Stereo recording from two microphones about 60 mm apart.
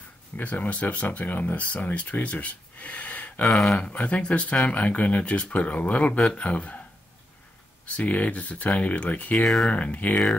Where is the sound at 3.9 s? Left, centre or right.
Left.